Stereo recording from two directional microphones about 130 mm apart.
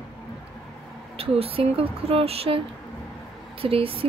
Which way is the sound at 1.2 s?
50° right (ahead or behind).